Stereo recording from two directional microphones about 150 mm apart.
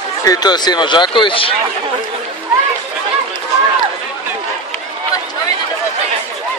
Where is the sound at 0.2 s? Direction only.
25° left (ahead or behind).